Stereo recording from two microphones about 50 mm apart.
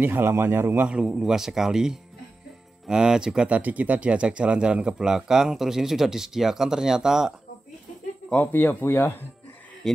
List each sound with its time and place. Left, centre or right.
0.0 s a man's voice: right
1.0 s speech: centre
3.4 s speech: right; by 7.3 s centre
8.5 s speech: left